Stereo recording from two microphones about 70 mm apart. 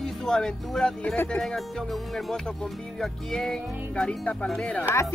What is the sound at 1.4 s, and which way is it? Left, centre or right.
Music, centre.